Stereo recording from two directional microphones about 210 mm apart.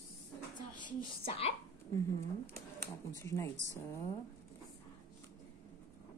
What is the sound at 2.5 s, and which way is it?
Speech, 10° left (ahead or behind).